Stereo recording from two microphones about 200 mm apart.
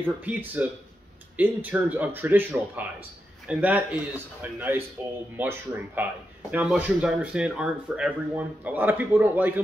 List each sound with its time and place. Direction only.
0.0 s speech: 10° right (ahead or behind)